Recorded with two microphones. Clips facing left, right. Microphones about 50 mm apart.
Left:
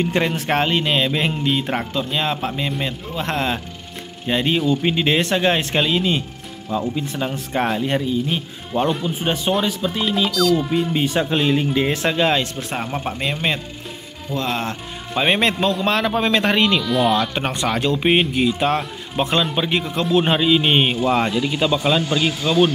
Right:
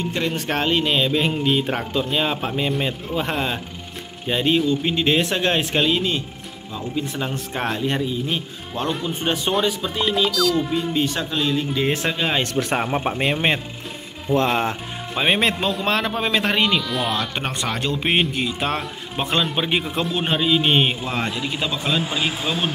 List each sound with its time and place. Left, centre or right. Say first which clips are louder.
0.0 s speech: left 5 dB; left
0.5 s speech: right 1 dB; centre
4.6 s speech: left 2 dB; centre
5.0 s speech: left 1 dB; centre
10.9 s speech: left 3 dB; left
12.1 s speech: left 5 dB; centre
12.7 s speech: right 1 dB; centre
15.1 s speech: left 2 dB; centre
22.0 s speech: left 3 dB; centre